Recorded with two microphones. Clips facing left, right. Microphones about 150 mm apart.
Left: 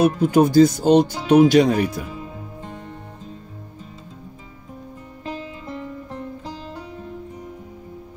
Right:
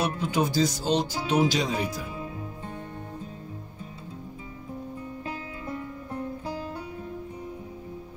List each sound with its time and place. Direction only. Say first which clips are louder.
0.0 s speech: left 10 dB; 50° left (ahead or behind)